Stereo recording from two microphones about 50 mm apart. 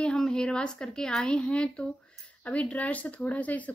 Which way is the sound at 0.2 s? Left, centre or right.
Centre.